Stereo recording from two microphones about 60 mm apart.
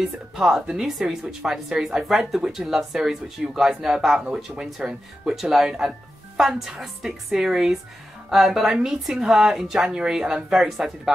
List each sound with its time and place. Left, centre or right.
0.0 s a woman's voice: centre